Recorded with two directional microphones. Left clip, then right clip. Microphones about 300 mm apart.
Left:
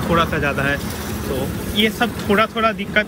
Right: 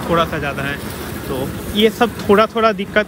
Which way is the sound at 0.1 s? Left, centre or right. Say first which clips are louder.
Right 1 dB; centre.